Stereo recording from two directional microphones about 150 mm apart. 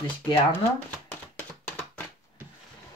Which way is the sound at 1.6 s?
10° left (ahead or behind).